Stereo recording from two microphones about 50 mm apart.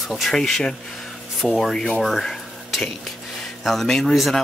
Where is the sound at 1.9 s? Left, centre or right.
Centre.